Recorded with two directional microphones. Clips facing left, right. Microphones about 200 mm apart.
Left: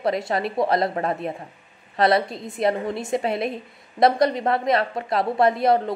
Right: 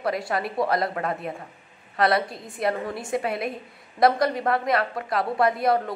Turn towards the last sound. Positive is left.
turn(degrees=25)  # may be behind; listen again after turning